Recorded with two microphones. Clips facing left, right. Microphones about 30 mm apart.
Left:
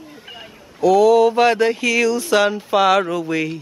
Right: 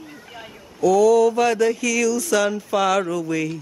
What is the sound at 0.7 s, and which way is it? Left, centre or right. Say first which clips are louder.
Mantra: left 2 dB; left.